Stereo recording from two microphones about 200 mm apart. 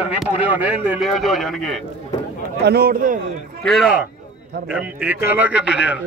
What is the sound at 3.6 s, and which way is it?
A man's voice, centre (ahead or behind).